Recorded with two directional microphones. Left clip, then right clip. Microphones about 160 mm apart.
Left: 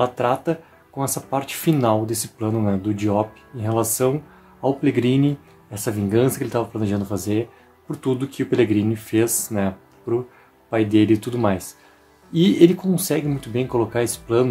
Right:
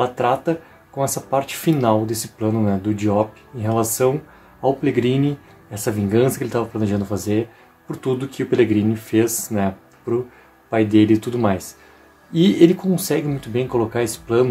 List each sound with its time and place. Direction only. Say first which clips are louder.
0.0 s speech: right 1 dB; 20° left (ahead or behind)
10.7 s speech: right 2 dB; 20° left (ahead or behind)